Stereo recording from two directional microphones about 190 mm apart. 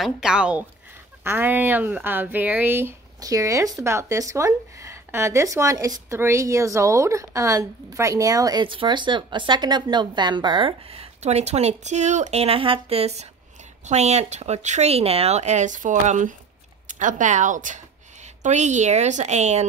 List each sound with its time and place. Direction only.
0.0 s a woman's voice: 5° right (ahead or behind); by 19.6 s 35° right (ahead or behind)